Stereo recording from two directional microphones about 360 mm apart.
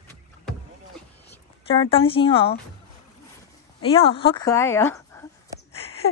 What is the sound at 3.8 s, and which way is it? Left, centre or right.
Speech, centre.